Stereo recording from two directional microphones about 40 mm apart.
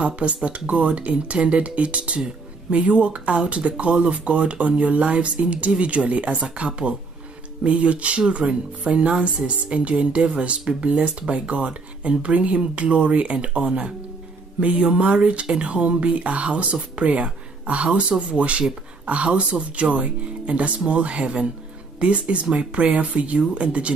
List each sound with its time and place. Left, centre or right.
0.0 s speech: right